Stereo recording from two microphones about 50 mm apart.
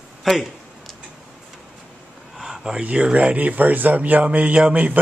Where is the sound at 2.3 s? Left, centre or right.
Centre.